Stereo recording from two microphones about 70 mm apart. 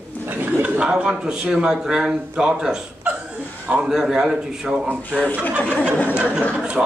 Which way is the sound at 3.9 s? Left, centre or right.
Centre.